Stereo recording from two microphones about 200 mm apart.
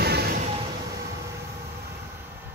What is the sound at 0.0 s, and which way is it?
Vehicle, 50° right (ahead or behind).